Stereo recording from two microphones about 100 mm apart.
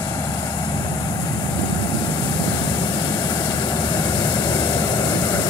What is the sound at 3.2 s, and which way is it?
Vehicle, 45° left (ahead or behind).